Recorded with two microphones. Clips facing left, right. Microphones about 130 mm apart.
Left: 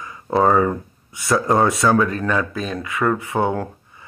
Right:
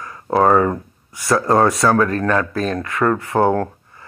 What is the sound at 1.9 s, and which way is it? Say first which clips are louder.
Speech: right 2 dB; 45° right (ahead or behind).